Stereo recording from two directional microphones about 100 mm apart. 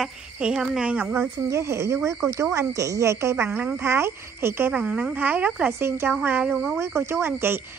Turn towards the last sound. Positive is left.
turn(degrees=-25)  # may be behind; listen again after turning